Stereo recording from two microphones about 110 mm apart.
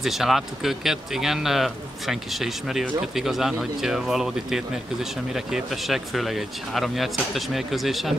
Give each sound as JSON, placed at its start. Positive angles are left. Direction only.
{"t": 0.0, "sound": "speech", "side_deg": 0}